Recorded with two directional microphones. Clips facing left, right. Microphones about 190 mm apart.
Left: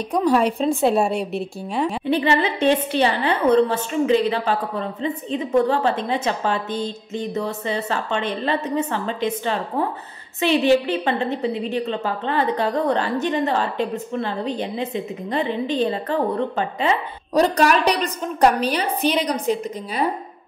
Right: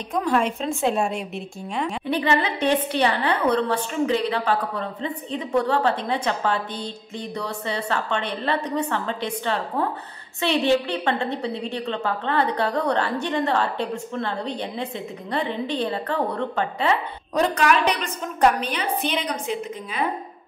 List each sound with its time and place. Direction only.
0.1 s a woman's voice: 35° left (ahead or behind); by 16.9 s 20° left (ahead or behind)
17.3 s a woman's voice: 35° left (ahead or behind)